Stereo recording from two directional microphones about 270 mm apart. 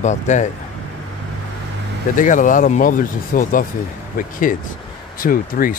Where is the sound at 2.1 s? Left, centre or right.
Left.